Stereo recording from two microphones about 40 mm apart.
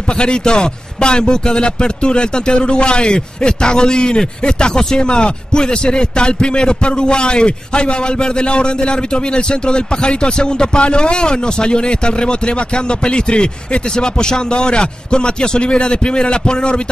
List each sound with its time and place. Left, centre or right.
0.2 s speech: left
13.0 s speech: left